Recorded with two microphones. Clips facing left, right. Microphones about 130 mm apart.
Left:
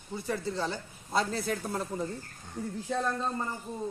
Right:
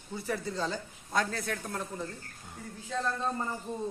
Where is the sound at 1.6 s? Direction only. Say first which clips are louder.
Left 4 dB; 10° left (ahead or behind).